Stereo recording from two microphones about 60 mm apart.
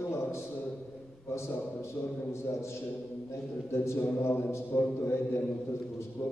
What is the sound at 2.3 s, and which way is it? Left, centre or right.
A man's voice, left.